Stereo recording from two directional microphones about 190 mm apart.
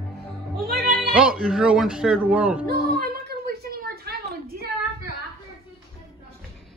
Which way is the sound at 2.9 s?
55° right (ahead or behind).